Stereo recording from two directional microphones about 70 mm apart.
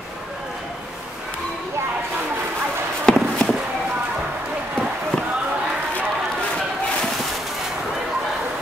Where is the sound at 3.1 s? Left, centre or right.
Centre.